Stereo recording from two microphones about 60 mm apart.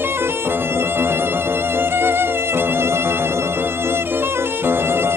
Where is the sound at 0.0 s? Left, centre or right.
Right.